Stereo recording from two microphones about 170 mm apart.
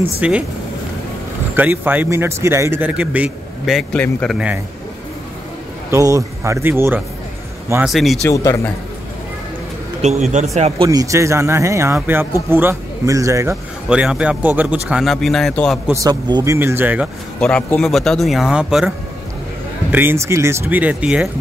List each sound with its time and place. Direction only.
0.2 s a man's voice: 5° right (ahead or behind)
1.6 s a man's voice: 10° right (ahead or behind); by 4.4 s 5° left (ahead or behind)
5.9 s a man's voice: 20° right (ahead or behind)
7.8 s speech: centre (ahead or behind)
8.3 s a man's voice: 20° left (ahead or behind)
10.3 s speech: 40° right (ahead or behind)
10.9 s a man's voice: 20° right (ahead or behind)
13.8 s speech: 5° right (ahead or behind)
15.9 s a man's voice: 20° right (ahead or behind)
16.5 s a man's voice: 15° right (ahead or behind)
17.4 s a man's voice: 5° left (ahead or behind)